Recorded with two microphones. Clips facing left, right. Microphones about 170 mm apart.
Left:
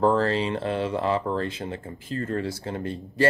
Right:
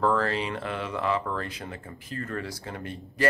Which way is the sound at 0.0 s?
30° left (ahead or behind).